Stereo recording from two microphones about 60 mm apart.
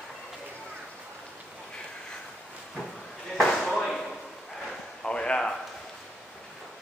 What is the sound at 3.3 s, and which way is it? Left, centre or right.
Slam, centre.